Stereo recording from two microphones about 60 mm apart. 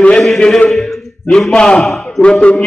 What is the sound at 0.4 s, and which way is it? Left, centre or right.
Chant, centre.